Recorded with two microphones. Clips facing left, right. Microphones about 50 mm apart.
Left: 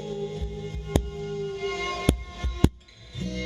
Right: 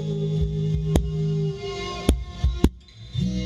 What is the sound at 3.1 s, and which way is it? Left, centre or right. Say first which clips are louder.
Music: right 5 dB; left.